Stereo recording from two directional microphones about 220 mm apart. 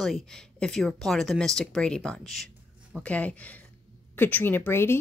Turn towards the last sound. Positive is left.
turn(degrees=10)  # may be behind; listen again after turning